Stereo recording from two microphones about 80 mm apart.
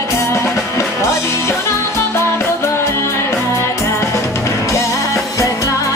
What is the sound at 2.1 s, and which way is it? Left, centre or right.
Music, left.